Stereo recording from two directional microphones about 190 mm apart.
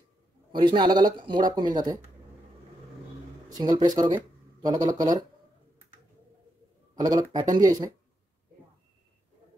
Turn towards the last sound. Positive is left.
turn(degrees=-20)  # may be behind; listen again after turning